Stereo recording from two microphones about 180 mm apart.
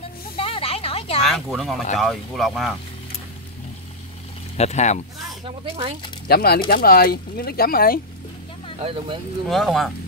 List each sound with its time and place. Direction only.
0.4 s a sound: 30° left (ahead or behind)
1.2 s speech: centre (ahead or behind)
4.6 s speech: 40° left (ahead or behind)
6.2 s speech: 60° left (ahead or behind)
8.7 s speech: 30° right (ahead or behind)
9.5 s speech: centre (ahead or behind)